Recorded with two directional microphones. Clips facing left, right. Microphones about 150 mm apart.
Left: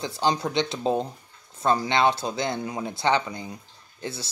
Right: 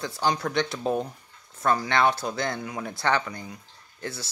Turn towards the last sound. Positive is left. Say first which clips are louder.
# left 1 dB
turn(degrees=20)  # may be behind; listen again after turning